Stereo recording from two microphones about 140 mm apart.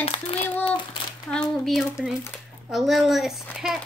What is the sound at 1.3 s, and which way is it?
Speech, 5° left (ahead or behind).